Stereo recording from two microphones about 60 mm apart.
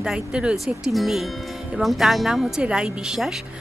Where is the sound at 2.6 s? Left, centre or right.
Centre.